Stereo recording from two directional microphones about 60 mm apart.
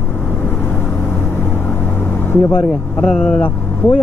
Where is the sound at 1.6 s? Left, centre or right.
Left.